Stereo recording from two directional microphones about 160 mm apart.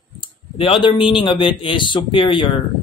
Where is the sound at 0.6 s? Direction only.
30° left (ahead or behind).